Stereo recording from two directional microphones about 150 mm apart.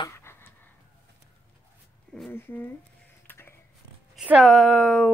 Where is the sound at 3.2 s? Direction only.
15° left (ahead or behind).